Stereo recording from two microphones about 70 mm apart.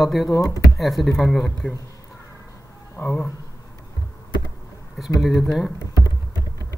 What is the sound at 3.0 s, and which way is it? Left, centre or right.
Speech, left.